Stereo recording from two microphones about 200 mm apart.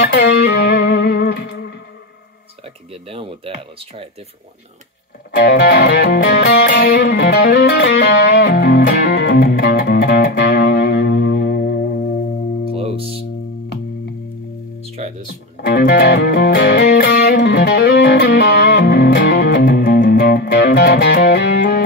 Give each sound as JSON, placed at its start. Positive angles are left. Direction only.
{"t": 0.0, "sound": "music", "side_deg": 55}
{"t": 2.6, "sound": "speech", "side_deg": -30}
{"t": 5.3, "sound": "music", "side_deg": 55}
{"t": 12.7, "sound": "music", "side_deg": -30}
{"t": 15.5, "sound": "music", "side_deg": 55}